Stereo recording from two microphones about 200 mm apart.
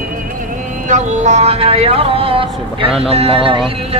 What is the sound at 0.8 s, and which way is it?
Speech, 35° right (ahead or behind).